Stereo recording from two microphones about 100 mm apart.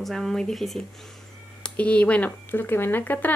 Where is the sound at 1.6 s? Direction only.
15° left (ahead or behind).